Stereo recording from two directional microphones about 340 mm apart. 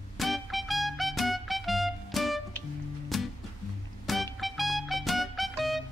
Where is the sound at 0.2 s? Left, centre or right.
Centre.